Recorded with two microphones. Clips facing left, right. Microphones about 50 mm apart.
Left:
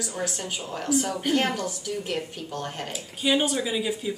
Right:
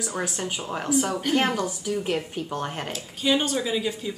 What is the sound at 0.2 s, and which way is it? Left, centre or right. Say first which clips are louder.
Speech: even; right.